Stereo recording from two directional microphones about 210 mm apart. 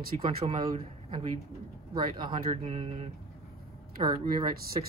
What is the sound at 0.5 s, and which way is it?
Speech, 30° right (ahead or behind).